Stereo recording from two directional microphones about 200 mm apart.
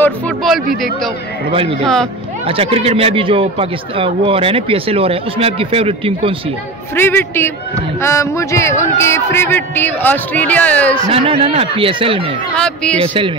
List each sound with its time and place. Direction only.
0.0 s speech: centre (ahead or behind)
1.5 s speech: 25° right (ahead or behind)
7.0 s speech: 10° left (ahead or behind)
11.1 s speech: 30° right (ahead or behind)
12.5 s speech: 5° left (ahead or behind)
13.0 s speech: 25° right (ahead or behind)